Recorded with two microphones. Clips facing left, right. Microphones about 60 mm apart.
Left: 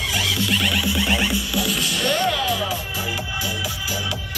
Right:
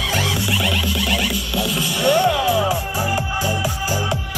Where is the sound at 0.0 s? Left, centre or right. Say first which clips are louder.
Right 3 dB; right.